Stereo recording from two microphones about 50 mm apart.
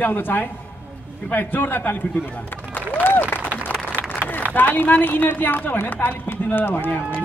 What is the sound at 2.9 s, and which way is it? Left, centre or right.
Applause, left.